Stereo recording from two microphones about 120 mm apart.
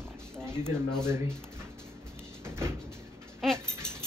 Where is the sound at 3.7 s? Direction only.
20° right (ahead or behind).